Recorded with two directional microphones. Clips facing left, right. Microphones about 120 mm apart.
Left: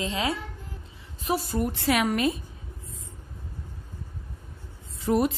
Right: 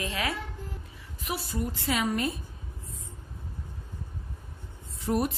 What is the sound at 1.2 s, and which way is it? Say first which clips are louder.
Speech: left 7 dB; 40° left (ahead or behind).